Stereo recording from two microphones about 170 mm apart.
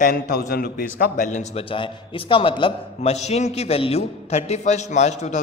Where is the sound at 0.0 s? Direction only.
60° left (ahead or behind).